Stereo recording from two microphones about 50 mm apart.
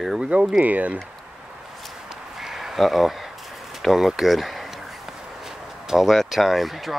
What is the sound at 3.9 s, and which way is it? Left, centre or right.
Speech, centre.